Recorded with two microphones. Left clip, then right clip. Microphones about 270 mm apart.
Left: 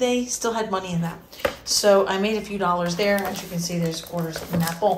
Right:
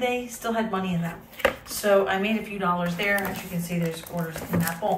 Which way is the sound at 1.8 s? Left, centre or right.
Centre.